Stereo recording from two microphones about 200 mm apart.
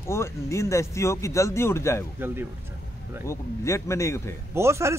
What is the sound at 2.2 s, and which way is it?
Speech, 10° right (ahead or behind).